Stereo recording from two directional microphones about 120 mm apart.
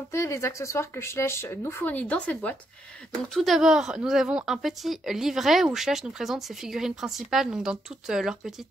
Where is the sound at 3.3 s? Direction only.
Centre (ahead or behind).